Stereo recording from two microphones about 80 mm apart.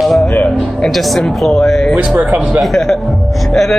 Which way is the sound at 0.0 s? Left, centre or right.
Centre.